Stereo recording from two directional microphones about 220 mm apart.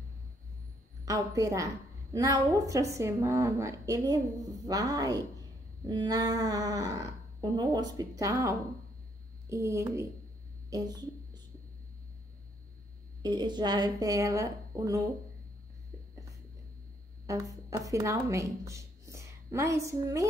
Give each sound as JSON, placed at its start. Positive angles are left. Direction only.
{"t": 1.0, "sound": "a woman's voice", "side_deg": -15}
{"t": 10.7, "sound": "a sound", "side_deg": -20}
{"t": 13.2, "sound": "a woman's voice", "side_deg": -20}
{"t": 17.3, "sound": "speech", "side_deg": -15}